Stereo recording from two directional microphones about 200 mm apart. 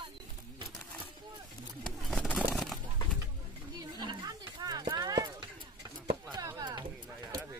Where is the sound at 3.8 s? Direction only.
20° right (ahead or behind).